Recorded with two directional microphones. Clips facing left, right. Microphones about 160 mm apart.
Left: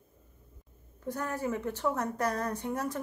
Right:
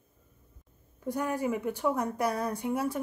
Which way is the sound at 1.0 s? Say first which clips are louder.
Right 3 dB; 10° right (ahead or behind).